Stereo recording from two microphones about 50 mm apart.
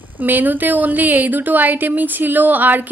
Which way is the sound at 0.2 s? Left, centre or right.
Right.